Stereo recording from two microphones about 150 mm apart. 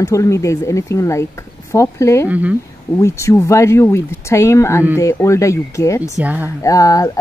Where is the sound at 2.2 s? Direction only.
10° right (ahead or behind).